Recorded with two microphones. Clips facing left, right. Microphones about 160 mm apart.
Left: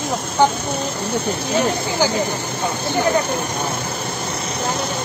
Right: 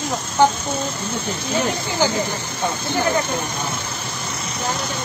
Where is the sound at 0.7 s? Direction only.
65° left (ahead or behind).